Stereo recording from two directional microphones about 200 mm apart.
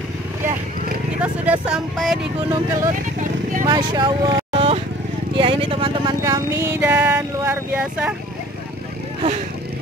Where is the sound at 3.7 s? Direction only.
20° right (ahead or behind).